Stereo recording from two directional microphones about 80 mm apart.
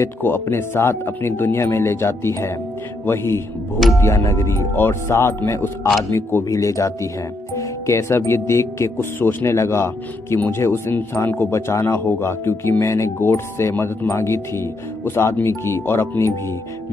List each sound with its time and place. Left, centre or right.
0.0 s speech: left
4.0 s speech: left